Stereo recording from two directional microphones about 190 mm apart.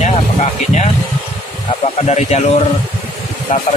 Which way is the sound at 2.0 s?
35° left (ahead or behind).